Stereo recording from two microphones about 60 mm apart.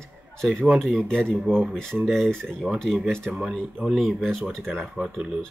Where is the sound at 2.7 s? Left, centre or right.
Centre.